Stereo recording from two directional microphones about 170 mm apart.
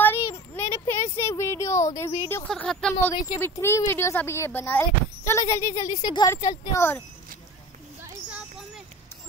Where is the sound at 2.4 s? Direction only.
5° left (ahead or behind); by 6.5 s 20° left (ahead or behind).